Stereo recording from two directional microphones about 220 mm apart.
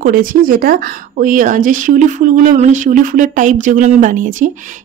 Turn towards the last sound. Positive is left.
turn(degrees=-35)  # may be behind; listen again after turning